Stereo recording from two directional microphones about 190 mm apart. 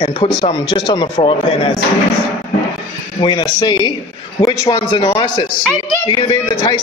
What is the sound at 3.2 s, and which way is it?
Speech, 25° left (ahead or behind).